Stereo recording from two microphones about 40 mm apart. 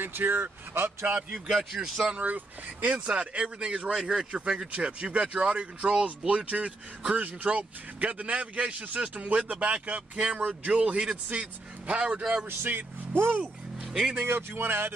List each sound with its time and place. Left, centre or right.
0.0 s speech: right
1.5 s a man's voice: centre
2.1 s speech: right
3.5 s speech: right
3.9 s speech: centre
4.3 s speech: right
12.2 s speech: centre
12.4 s speech: right